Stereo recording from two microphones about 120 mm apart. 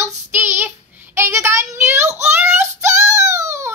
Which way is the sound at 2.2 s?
20° right (ahead or behind).